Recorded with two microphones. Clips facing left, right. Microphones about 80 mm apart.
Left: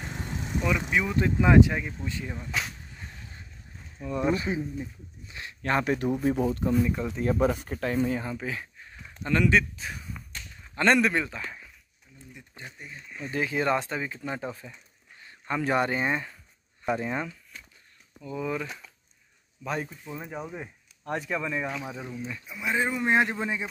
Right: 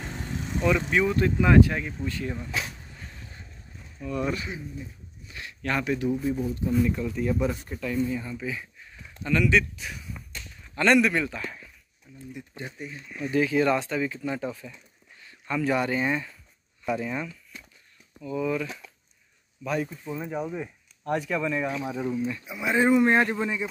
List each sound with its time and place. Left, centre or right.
0.0 s vehicle: centre
1.1 s speech: centre
4.0 s speech: left
7.0 s speech: left
7.2 s speech: left
7.5 s speech: left
8.4 s speech: left
12.7 s speech: centre
13.3 s speech: left
20.2 s speech: centre
20.5 s speech: left
21.4 s speech: centre
21.6 s speech: centre
23.0 s speech: centre